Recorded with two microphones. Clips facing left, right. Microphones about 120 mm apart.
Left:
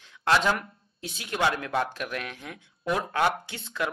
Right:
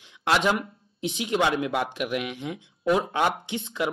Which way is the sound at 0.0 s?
20° right (ahead or behind).